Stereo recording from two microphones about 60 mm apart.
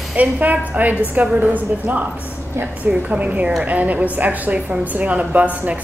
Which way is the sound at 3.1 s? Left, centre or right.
Right.